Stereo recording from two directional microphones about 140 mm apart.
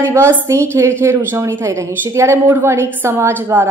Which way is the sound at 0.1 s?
20° right (ahead or behind).